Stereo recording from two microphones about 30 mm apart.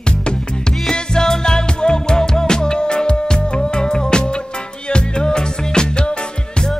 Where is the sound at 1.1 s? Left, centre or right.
Left.